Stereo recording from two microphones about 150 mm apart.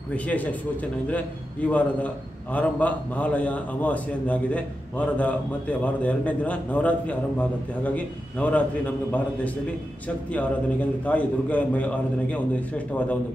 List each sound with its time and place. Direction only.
0.1 s a man's voice: 10° left (ahead or behind)